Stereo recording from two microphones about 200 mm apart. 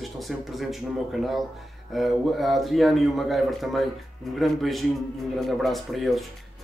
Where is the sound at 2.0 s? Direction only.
Centre (ahead or behind).